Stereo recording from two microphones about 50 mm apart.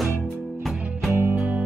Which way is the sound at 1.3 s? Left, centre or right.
Right.